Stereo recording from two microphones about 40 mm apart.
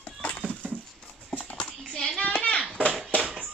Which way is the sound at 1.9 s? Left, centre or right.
Centre.